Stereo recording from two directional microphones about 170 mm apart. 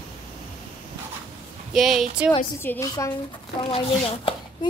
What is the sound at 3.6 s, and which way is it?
Speech, 35° left (ahead or behind).